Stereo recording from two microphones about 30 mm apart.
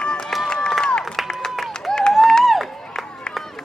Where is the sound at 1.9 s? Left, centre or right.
Centre.